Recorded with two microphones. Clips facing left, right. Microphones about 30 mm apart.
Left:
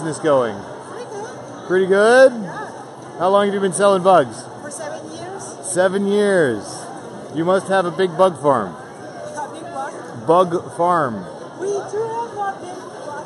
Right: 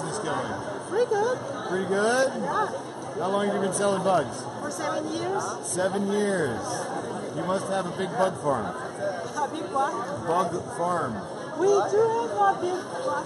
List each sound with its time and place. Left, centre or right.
0.0 s speech: left
0.9 s a sound: centre
1.7 s a man's voice: left
2.4 s speech: centre
3.2 s a man's voice: left
4.8 s a sound: centre
5.8 s a man's voice: left
10.2 s a man's voice: left
10.8 s speech: left
11.6 s speech: centre